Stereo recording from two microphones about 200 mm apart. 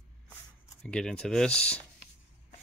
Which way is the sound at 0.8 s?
5° left (ahead or behind).